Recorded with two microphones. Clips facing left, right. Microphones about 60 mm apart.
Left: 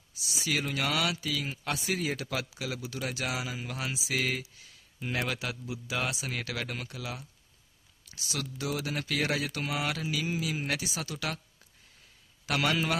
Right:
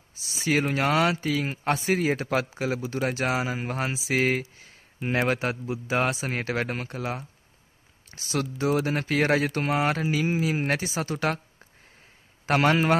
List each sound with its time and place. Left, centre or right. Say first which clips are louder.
0.1 s speech: right 7 dB; right
12.4 s speech: right 7 dB; right